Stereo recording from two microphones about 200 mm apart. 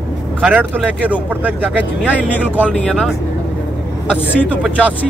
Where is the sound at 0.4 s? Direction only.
5° right (ahead or behind).